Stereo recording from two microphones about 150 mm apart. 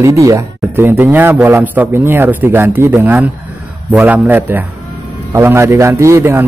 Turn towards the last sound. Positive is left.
turn(degrees=-15)  # may be behind; listen again after turning